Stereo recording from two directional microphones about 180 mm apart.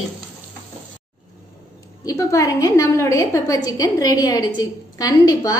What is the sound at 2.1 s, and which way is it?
A woman's voice, 15° left (ahead or behind).